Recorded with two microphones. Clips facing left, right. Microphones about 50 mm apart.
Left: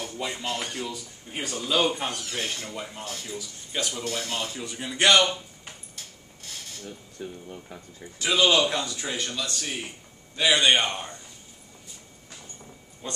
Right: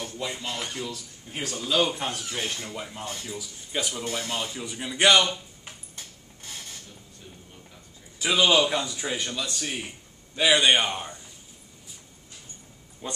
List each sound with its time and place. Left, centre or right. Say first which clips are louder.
0.0 s a man's voice: left 1 dB; centre
4.0 s a man's voice: even; centre
7.2 s speech: left 13 dB; left
8.2 s a man's voice: even; centre
13.0 s a man's voice: right 1 dB; centre